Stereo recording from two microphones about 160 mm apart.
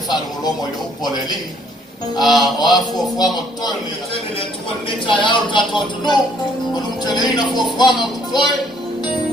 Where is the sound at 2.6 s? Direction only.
25° left (ahead or behind).